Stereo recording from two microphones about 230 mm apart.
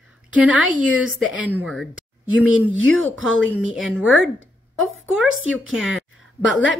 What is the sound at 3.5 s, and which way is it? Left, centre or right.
Speech, centre.